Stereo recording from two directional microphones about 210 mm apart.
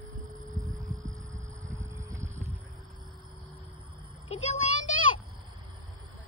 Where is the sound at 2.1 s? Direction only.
35° right (ahead or behind).